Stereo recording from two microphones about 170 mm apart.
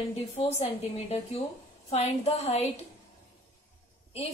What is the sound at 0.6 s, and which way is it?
A woman's voice, 35° left (ahead or behind).